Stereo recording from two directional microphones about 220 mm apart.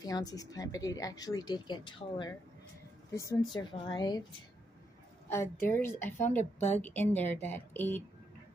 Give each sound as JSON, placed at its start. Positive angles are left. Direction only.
{"t": 0.0, "sound": "a woman's voice", "side_deg": 15}
{"t": 5.3, "sound": "a woman's voice", "side_deg": 10}